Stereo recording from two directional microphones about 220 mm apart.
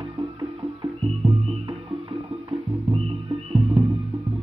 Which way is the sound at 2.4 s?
20° right (ahead or behind).